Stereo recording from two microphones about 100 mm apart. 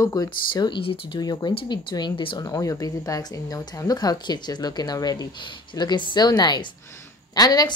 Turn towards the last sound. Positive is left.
turn(degrees=40)  # may be behind; listen again after turning